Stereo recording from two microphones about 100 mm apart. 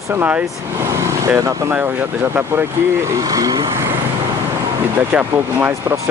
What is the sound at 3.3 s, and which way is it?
Vehicle, 35° right (ahead or behind).